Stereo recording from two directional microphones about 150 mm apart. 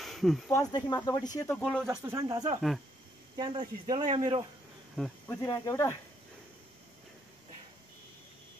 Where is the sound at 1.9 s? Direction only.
20° right (ahead or behind).